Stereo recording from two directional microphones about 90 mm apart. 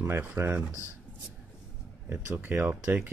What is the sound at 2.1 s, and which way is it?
Speech, 25° right (ahead or behind).